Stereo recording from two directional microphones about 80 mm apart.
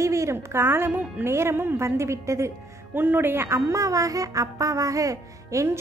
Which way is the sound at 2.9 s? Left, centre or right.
Right.